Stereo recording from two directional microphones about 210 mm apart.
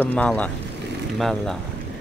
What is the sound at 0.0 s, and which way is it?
Speech, 10° left (ahead or behind).